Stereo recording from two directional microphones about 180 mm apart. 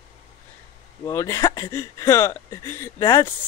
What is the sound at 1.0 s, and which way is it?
Speech, 15° left (ahead or behind).